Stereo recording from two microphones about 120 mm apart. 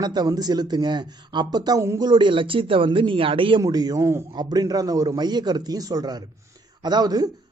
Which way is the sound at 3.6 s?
35° right (ahead or behind).